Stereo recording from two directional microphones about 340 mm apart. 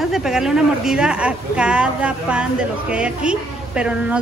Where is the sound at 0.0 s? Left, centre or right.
Centre.